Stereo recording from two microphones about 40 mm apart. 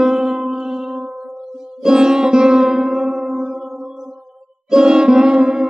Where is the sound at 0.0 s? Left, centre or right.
Centre.